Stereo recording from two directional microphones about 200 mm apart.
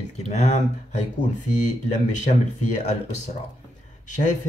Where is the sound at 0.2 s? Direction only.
35° left (ahead or behind).